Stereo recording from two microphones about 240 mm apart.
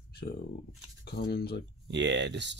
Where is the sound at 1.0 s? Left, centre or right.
Left.